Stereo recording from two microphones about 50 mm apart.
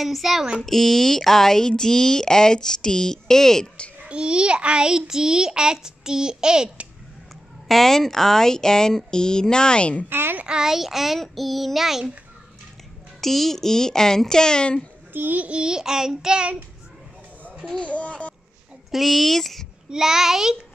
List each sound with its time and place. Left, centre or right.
0.0 s child singing: centre
0.7 s speech: centre
4.0 s a child's voice: right
7.6 s speech: centre; by 10.0 s left
10.0 s a woman's voice: right
10.4 s child singing: centre
13.2 s speech: centre
15.1 s a child's voice: right
15.5 s a child's voice: centre
17.7 s speech: left
18.9 s child singing: centre
19.9 s a child's voice: centre